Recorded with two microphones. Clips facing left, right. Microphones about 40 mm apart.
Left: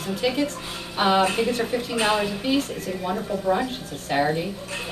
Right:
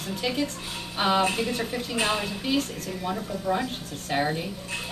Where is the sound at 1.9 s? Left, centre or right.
Centre.